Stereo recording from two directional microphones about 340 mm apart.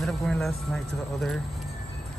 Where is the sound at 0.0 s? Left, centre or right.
Centre.